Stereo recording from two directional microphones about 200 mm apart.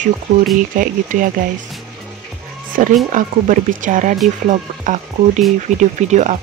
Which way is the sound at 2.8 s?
40° right (ahead or behind).